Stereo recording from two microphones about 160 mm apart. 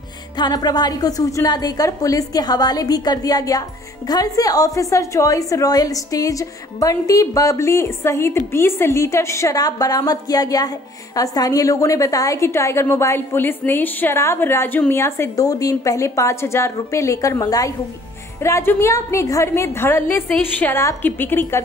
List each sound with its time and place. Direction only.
0.4 s a woman's voice: 25° left (ahead or behind)